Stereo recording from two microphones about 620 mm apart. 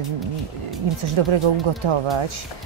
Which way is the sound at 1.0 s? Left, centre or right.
Right.